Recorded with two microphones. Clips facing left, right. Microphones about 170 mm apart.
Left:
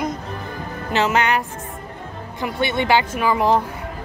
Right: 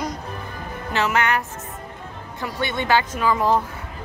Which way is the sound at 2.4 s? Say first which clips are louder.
Left 4 dB; 15° left (ahead or behind).